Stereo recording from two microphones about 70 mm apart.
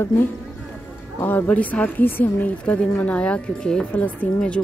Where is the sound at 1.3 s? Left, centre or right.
Left.